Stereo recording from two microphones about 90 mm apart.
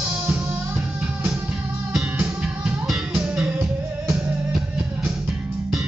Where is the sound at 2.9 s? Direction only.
10° right (ahead or behind).